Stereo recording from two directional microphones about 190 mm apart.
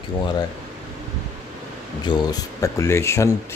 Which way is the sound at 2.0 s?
20° left (ahead or behind).